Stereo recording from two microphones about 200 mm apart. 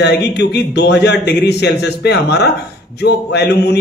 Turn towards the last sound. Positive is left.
turn(degrees=55)  # may be behind; listen again after turning